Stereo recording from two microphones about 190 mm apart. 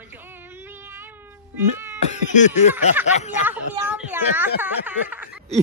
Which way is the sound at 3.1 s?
35° left (ahead or behind).